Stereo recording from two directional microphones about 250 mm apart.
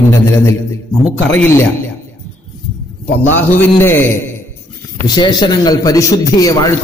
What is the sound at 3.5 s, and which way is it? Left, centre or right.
A man's voice, centre.